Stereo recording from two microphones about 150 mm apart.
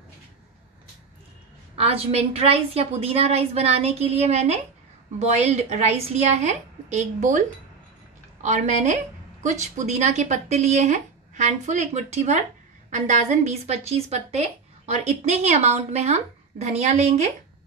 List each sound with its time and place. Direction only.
1.8 s a woman's voice: 40° right (ahead or behind)